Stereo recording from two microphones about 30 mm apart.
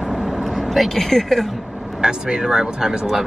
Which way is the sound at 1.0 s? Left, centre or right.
Centre.